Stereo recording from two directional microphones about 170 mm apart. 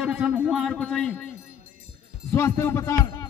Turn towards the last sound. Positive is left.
turn(degrees=15)  # may be behind; listen again after turning